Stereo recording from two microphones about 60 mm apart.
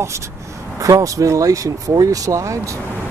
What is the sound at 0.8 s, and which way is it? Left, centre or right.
Speech, right.